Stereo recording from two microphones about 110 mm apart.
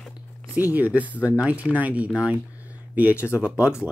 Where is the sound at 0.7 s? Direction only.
15° right (ahead or behind).